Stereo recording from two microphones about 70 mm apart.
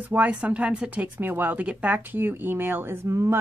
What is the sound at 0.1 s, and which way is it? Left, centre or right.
Speech, right.